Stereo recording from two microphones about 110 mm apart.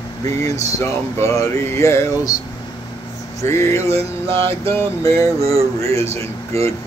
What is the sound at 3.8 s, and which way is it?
Speech, 60° right (ahead or behind).